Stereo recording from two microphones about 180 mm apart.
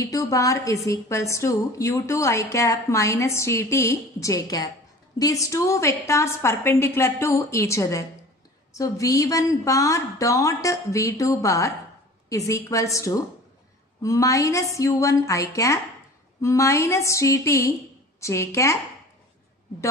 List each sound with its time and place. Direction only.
0.0 s a woman's voice: 20° left (ahead or behind)